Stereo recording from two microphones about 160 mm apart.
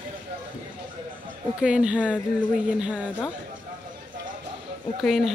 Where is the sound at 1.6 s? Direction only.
5° right (ahead or behind).